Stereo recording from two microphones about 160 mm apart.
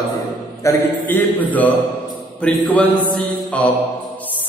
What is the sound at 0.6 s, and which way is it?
Speech, 10° left (ahead or behind).